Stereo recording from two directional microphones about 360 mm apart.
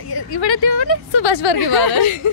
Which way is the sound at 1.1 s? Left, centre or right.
Left.